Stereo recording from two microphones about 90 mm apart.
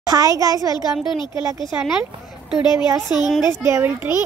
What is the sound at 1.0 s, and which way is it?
Speech, 60° left (ahead or behind).